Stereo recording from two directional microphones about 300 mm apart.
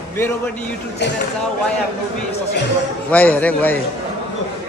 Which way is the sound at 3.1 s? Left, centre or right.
Centre.